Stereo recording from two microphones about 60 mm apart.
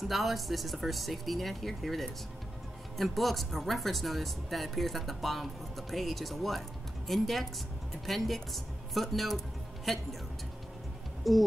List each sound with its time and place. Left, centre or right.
0.1 s speech: centre
11.3 s speech: centre